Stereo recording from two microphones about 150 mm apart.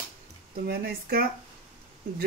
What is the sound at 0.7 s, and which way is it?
Speech, 90° right.